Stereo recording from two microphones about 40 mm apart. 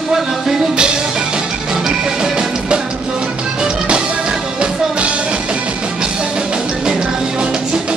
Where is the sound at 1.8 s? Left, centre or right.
Centre.